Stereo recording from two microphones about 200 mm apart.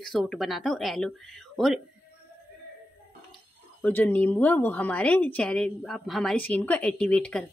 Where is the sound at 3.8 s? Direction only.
10° left (ahead or behind).